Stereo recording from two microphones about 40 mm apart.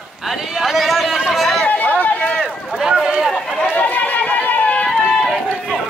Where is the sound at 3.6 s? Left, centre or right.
Left.